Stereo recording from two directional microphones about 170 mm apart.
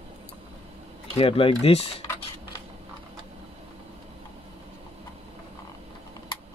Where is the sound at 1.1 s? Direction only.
35° left (ahead or behind).